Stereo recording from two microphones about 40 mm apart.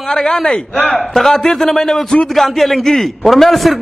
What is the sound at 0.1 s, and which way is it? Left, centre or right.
A man's voice, centre.